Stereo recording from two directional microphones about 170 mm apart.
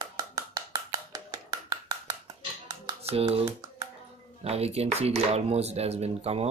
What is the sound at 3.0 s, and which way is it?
Speech, 35° right (ahead or behind).